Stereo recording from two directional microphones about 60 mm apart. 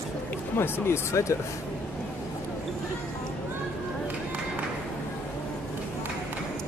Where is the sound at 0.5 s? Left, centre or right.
Left.